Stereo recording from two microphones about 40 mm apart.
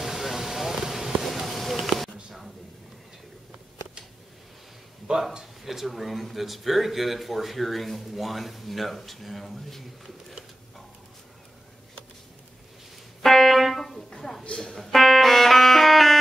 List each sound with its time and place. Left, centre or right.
0.0 s a sound: centre
5.1 s speech: right
5.4 s speech: centre
13.2 s music: centre